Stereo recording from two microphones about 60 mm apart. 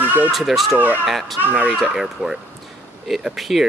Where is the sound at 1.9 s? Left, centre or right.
Centre.